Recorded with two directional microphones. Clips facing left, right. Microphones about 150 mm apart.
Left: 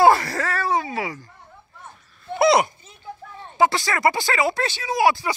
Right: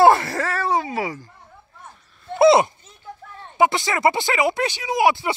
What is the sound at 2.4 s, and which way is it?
Speech, 25° right (ahead or behind).